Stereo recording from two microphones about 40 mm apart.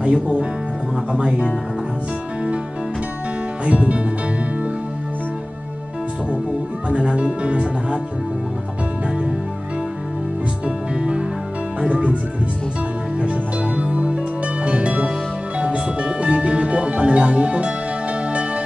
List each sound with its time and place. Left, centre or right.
0.0 s speech: right
3.6 s speech: right
6.9 s speech: right
11.0 s music: right
13.9 s music: right